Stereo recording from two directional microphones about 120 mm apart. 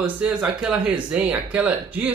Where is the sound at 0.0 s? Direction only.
10° right (ahead or behind).